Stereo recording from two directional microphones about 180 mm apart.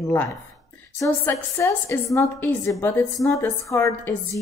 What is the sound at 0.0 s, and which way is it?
Speech, 15° left (ahead or behind).